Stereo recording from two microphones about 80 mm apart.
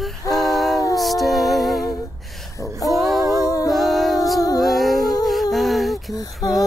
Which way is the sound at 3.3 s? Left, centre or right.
Left.